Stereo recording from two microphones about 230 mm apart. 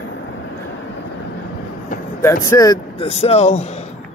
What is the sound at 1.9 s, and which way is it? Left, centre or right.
Vehicle, left.